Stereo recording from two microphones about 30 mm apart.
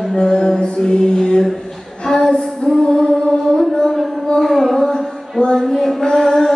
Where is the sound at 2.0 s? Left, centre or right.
Centre.